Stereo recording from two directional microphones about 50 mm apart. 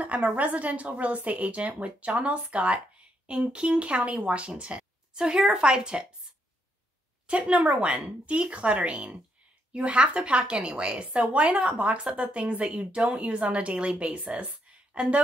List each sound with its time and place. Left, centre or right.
0.0 s a woman's voice: right
7.2 s a woman's voice: right